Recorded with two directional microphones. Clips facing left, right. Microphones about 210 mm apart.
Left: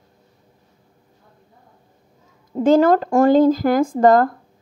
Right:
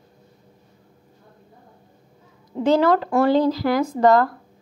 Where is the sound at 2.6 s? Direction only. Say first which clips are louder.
Left 4 dB; 45° left (ahead or behind).